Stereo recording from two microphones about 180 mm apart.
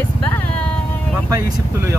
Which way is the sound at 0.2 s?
10° left (ahead or behind).